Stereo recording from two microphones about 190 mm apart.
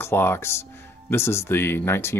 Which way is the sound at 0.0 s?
10° left (ahead or behind).